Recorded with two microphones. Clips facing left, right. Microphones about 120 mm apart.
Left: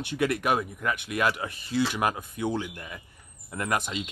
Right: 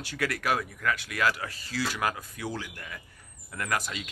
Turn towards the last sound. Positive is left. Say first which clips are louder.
# left 3 dB
turn(degrees=25)  # may be behind; listen again after turning